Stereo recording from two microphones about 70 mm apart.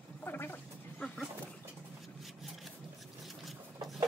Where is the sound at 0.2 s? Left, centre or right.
Left.